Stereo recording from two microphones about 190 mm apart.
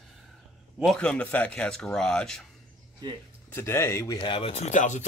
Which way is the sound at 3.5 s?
15° left (ahead or behind).